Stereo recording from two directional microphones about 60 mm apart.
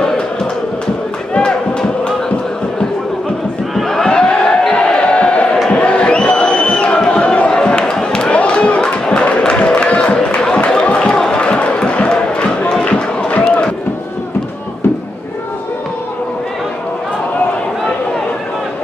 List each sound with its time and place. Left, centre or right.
1.3 s music: centre
3.7 s a sound: centre
5.7 s crowd: centre
9.4 s music: centre